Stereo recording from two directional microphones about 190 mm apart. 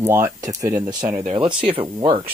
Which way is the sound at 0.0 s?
15° right (ahead or behind).